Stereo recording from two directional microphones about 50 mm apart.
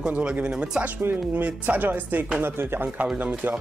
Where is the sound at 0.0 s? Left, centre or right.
Right.